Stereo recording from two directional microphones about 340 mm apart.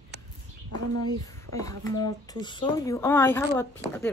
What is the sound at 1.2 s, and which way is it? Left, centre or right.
A woman's voice, centre.